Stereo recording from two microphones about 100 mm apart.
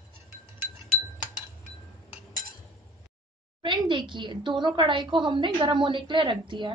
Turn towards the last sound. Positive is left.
turn(degrees=-55)  # may be behind; listen again after turning